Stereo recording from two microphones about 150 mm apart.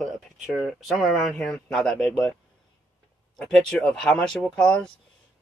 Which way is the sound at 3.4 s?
5° left (ahead or behind).